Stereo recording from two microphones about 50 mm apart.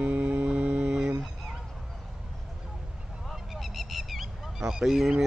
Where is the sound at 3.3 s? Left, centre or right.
Centre.